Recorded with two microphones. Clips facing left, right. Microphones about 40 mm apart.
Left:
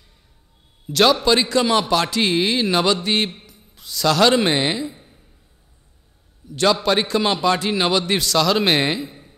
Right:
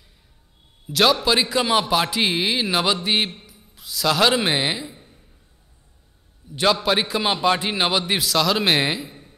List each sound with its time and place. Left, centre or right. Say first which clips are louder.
0.8 s a man's voice: left 2 dB; centre
4.9 s a sound: even; centre
6.5 s speech: left 2 dB; centre
7.4 s a man's voice: left 1 dB; centre